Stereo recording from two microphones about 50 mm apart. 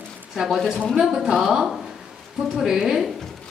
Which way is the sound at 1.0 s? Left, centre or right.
Centre.